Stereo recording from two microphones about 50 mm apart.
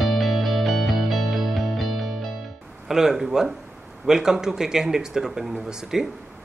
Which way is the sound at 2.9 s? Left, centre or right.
Centre.